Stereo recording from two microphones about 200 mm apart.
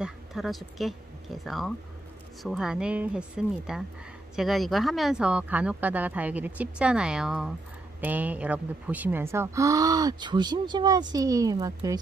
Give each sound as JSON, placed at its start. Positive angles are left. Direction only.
{"t": 0.0, "sound": "speech", "side_deg": 0}